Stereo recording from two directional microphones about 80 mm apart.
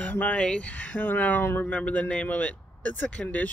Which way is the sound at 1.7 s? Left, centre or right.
Centre.